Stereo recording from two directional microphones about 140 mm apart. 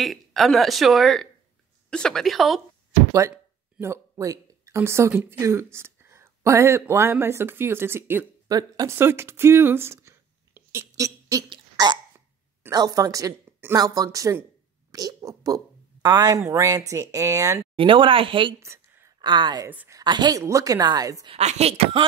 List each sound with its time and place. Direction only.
0.0 s speech: centre (ahead or behind)
3.1 s speech: 20° right (ahead or behind)
8.5 s speech: 25° right (ahead or behind)
11.4 s a sound: 30° right (ahead or behind)
12.7 s a woman's voice: 25° right (ahead or behind)
17.7 s speech: 40° right (ahead or behind)
18.6 s a sound: 20° right (ahead or behind)
19.2 s a woman's voice: 30° right (ahead or behind)
21.3 s a woman's voice: 50° right (ahead or behind)